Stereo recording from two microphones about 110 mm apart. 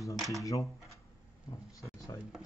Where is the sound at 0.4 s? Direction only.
30° left (ahead or behind).